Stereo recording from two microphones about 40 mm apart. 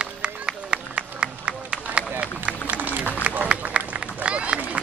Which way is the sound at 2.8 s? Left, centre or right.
Right.